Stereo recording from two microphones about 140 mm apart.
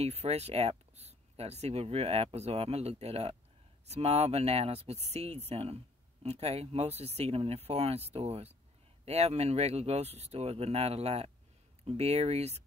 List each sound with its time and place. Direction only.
0.0 s speech: 50° right (ahead or behind)